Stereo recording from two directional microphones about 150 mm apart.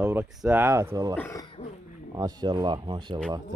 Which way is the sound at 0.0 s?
10° right (ahead or behind).